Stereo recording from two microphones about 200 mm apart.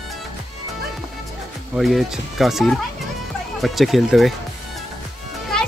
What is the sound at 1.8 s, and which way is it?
Speech, centre (ahead or behind).